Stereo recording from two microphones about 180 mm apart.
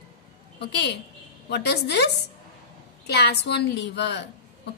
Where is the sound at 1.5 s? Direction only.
70° left (ahead or behind).